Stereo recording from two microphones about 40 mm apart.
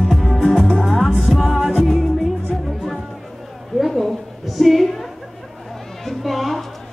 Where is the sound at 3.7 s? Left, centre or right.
Centre.